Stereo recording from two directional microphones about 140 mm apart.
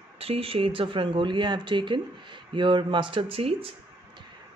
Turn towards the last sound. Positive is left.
turn(degrees=-40)  # may be behind; listen again after turning